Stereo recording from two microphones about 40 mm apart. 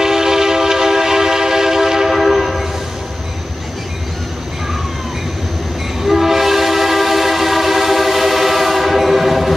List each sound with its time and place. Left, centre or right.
0.0 s train: centre
6.0 s train: centre